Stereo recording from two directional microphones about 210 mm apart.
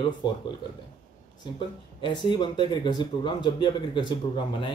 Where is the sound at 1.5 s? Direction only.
20° left (ahead or behind).